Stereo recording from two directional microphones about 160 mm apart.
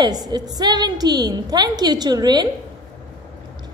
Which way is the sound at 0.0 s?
25° right (ahead or behind).